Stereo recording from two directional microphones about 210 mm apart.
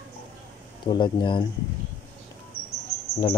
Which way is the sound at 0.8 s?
20° left (ahead or behind).